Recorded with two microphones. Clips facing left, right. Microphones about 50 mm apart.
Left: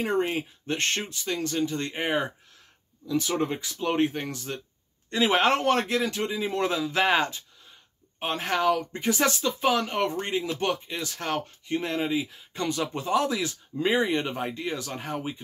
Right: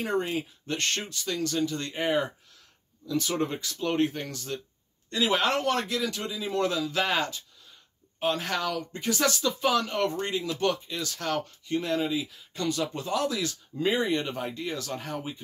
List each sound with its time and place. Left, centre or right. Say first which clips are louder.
0.0 s speech: left 2 dB; left
3.1 s speech: left 2 dB; centre